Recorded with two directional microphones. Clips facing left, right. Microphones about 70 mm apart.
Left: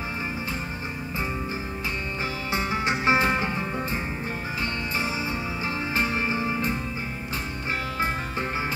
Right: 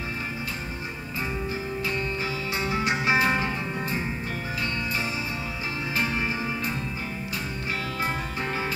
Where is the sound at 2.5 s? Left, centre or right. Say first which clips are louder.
Left 1 dB; left.